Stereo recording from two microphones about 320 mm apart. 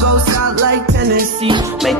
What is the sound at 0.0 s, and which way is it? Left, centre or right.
Music, right.